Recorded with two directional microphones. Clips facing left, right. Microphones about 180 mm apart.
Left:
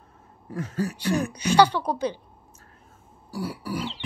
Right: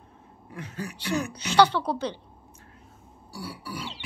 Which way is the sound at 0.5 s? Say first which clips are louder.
Left 8 dB; 45° left (ahead or behind).